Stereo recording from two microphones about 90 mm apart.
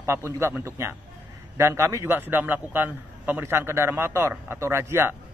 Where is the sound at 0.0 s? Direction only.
30° right (ahead or behind).